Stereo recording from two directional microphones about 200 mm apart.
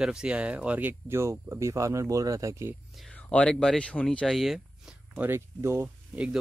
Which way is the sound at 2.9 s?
5° left (ahead or behind).